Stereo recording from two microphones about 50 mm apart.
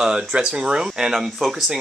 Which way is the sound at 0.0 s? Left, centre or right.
Centre.